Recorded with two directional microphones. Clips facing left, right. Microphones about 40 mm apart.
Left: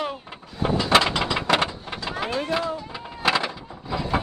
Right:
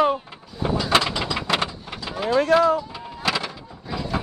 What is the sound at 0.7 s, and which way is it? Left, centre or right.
Ratchet, left.